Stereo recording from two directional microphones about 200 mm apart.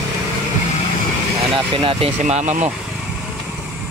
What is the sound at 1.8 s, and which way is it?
Speech, 30° right (ahead or behind).